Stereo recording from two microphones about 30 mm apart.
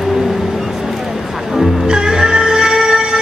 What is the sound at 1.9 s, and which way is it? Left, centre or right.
Music, right.